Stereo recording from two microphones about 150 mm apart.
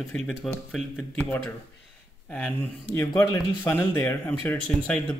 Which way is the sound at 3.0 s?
25° left (ahead or behind).